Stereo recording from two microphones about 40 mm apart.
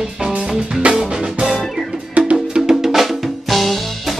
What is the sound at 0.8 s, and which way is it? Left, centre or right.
Music, centre.